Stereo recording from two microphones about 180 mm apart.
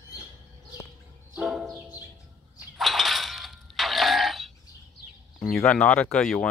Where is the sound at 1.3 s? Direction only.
5° right (ahead or behind).